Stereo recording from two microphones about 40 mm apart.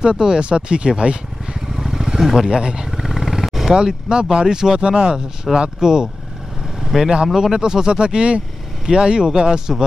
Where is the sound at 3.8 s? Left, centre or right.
Right.